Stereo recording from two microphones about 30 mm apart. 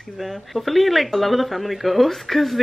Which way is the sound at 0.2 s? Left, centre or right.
Centre.